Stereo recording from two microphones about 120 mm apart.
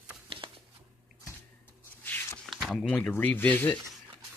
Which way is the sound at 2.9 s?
10° left (ahead or behind).